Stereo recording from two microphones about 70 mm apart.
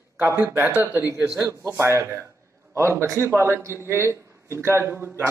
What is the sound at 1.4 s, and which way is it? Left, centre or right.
A man's voice, right.